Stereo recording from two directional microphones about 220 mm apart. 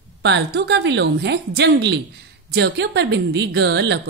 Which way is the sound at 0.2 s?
50° right (ahead or behind).